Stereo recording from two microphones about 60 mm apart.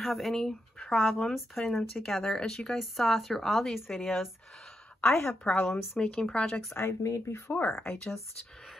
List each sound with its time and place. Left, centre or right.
0.0 s speech: centre
5.0 s a woman's voice: left
5.5 s speech: centre
6.7 s a woman's voice: left
7.0 s speech: left
7.7 s speech: centre